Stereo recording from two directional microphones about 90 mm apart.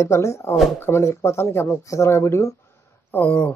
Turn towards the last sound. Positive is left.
turn(degrees=15)  # may be behind; listen again after turning